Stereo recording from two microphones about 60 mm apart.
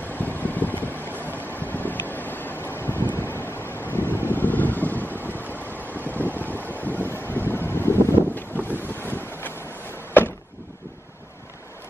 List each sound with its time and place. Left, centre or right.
0.1 s vehicle: left
1.2 s wind: left
4.2 s vehicle: left
5.9 s vehicle: right
6.3 s vehicle: left
8.4 s boat: left